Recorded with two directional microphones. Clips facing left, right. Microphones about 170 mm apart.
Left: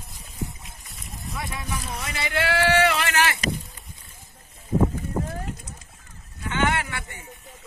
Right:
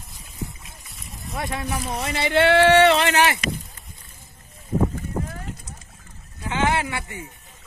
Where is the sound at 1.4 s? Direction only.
55° right (ahead or behind).